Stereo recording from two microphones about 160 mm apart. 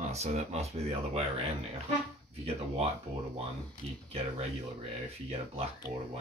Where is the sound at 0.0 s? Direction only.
45° right (ahead or behind).